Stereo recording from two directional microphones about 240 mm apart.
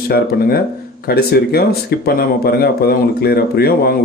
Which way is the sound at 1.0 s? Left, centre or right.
Left.